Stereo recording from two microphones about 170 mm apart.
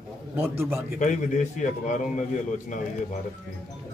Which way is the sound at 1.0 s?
45° left (ahead or behind).